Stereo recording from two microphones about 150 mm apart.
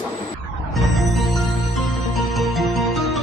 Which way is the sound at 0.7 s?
Centre (ahead or behind).